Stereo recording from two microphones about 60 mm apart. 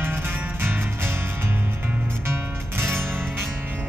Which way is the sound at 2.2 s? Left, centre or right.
Right.